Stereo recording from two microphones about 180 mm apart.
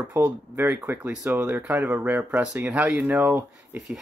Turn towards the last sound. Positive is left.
turn(degrees=0)  # may be behind; listen again after turning